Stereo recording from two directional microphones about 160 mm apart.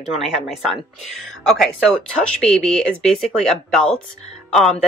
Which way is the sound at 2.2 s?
5° left (ahead or behind).